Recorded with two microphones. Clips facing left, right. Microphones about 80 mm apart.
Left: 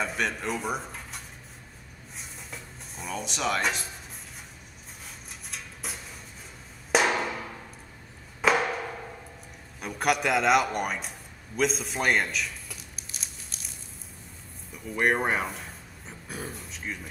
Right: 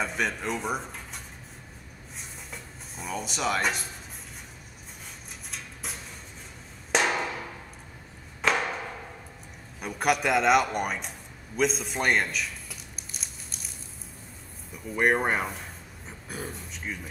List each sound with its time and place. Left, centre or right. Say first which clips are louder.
0.0 s speech: even; centre
2.1 s music: even; centre
5.5 s a sound: even; centre
6.9 s percussion: left 2 dB; centre
8.4 s a sound: left 3 dB; centre
14.7 s speech: right 1 dB; centre